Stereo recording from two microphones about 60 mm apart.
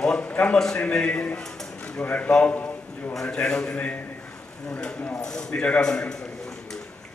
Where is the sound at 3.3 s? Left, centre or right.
Centre.